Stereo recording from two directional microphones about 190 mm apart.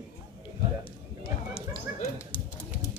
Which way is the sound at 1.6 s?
35° left (ahead or behind).